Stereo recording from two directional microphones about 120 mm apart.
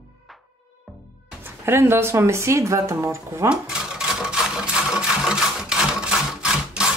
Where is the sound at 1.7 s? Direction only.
20° right (ahead or behind).